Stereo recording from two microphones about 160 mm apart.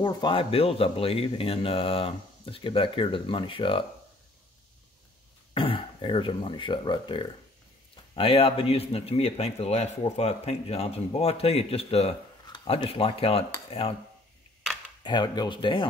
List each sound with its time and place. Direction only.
0.0 s a man's voice: 30° left (ahead or behind)
5.5 s a man's voice: 35° left (ahead or behind)
15.0 s speech: 25° left (ahead or behind)